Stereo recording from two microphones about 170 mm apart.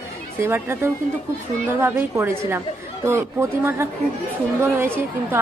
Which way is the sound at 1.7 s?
10° right (ahead or behind).